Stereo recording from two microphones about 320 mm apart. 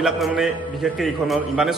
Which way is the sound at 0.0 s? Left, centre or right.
Centre.